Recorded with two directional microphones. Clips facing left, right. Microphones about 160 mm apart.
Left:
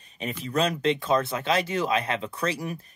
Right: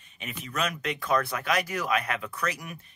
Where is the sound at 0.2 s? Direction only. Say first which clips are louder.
Left 6 dB; 30° left (ahead or behind).